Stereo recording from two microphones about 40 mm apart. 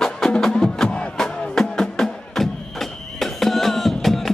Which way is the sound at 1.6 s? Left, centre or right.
Centre.